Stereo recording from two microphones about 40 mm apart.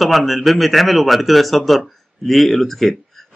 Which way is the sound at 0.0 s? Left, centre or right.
Centre.